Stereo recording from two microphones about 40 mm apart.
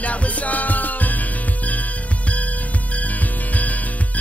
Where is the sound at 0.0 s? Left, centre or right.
Left.